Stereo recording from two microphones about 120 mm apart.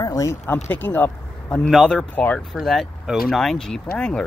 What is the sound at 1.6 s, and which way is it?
Speech, 5° left (ahead or behind).